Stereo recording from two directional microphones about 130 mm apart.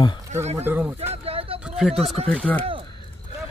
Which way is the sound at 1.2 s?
45° right (ahead or behind).